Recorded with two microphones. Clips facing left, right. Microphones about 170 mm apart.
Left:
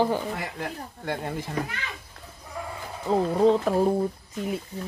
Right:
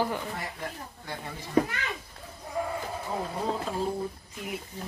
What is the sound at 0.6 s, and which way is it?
Speech, 65° left (ahead or behind).